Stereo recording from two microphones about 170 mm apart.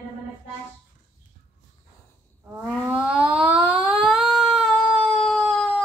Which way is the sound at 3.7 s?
30° right (ahead or behind).